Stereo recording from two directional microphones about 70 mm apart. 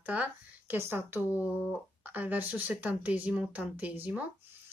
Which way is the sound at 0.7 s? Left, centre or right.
Right.